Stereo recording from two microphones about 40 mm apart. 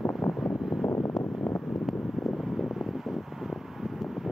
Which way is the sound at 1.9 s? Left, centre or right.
Centre.